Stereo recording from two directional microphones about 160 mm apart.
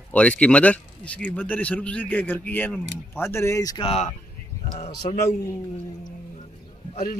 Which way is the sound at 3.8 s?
40° left (ahead or behind).